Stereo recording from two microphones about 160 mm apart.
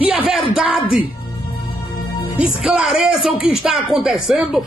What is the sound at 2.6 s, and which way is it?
Speech, 5° right (ahead or behind).